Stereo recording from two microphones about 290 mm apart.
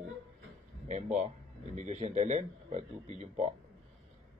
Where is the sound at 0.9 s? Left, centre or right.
Right.